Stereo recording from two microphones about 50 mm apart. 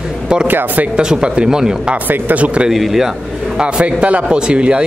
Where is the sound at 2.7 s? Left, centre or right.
Centre.